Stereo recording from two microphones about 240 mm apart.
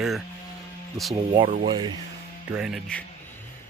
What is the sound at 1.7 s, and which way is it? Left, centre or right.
Speech, centre.